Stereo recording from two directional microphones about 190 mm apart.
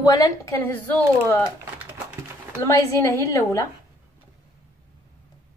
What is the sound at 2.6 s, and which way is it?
Speech, 15° left (ahead or behind).